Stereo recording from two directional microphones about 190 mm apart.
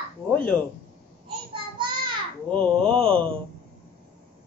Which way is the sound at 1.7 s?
25° right (ahead or behind).